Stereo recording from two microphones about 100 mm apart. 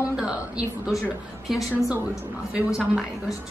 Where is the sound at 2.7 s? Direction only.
5° right (ahead or behind).